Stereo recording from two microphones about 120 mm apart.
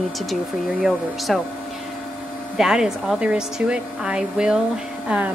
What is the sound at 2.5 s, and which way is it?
Speech, 5° right (ahead or behind).